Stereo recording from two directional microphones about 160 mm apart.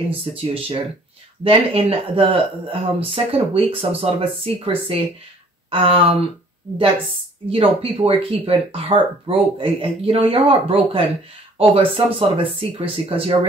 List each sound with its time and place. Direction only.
0.2 s speech: 35° right (ahead or behind)
7.4 s speech: 35° right (ahead or behind)